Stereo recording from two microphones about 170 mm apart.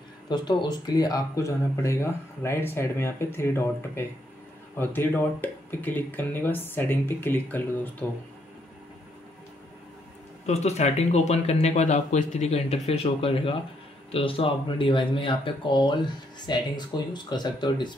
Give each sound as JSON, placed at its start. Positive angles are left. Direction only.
{"t": 0.3, "sound": "speech", "side_deg": 25}
{"t": 10.4, "sound": "speech", "side_deg": 40}